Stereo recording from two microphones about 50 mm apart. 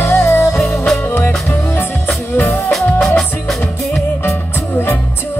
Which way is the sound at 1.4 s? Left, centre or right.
Left.